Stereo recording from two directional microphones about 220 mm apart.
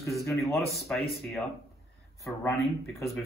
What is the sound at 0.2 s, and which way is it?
Speech, 15° left (ahead or behind).